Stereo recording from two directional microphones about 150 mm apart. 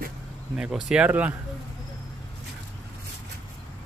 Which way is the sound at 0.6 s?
5° right (ahead or behind).